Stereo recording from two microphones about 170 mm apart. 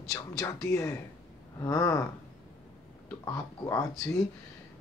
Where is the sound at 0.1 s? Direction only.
20° left (ahead or behind).